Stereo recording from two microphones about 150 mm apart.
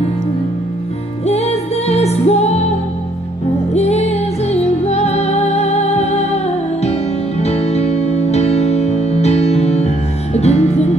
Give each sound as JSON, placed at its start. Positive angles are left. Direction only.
{"t": 1.2, "sound": "music", "side_deg": 45}
{"t": 3.7, "sound": "music", "side_deg": 45}